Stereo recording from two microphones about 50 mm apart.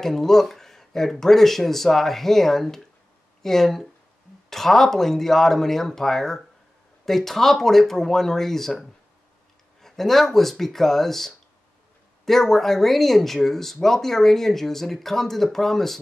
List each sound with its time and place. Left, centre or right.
0.0 s speech: centre